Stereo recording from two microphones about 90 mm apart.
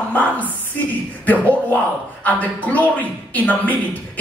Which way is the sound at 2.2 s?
20° left (ahead or behind).